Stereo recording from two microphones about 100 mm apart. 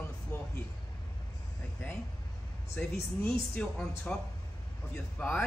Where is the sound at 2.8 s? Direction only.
15° left (ahead or behind).